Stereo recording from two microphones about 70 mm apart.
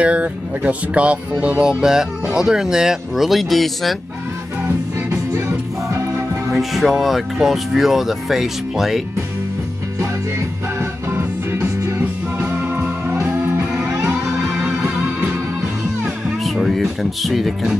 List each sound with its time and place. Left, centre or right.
0.0 s speech: centre
4.6 s music: right
6.5 s speech: centre
10.8 s music: right
12.4 s music: right
15.0 s music: right
16.4 s speech: centre